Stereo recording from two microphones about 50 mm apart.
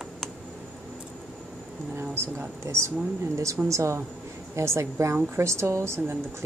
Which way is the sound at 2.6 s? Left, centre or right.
Right.